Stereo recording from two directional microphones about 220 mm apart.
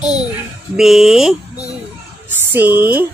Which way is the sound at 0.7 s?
Centre (ahead or behind).